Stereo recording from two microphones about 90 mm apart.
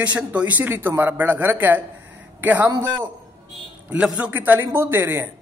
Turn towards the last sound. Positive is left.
turn(degrees=-30)  # may be behind; listen again after turning